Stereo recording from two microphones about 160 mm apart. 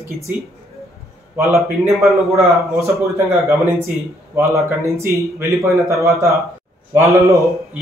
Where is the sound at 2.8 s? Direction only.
15° right (ahead or behind).